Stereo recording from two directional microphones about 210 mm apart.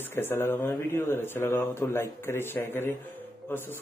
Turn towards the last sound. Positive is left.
turn(degrees=10)  # may be behind; listen again after turning